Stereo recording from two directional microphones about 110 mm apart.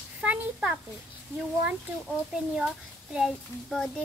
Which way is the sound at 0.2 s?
10° right (ahead or behind).